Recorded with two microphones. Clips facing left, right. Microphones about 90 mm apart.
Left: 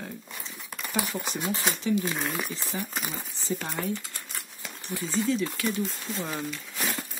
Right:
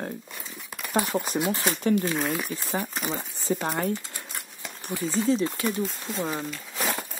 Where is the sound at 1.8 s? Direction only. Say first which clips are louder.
Right 4 dB; 55° right (ahead or behind).